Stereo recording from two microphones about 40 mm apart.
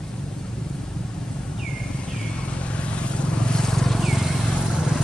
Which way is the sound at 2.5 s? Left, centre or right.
Left.